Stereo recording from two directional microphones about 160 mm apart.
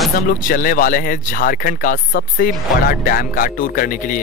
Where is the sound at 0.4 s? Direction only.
60° left (ahead or behind).